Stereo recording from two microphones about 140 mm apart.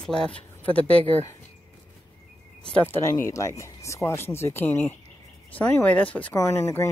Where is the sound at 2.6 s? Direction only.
10° left (ahead or behind).